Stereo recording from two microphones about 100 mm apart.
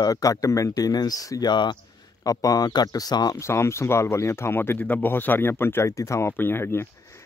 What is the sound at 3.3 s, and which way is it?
Speech, 25° left (ahead or behind).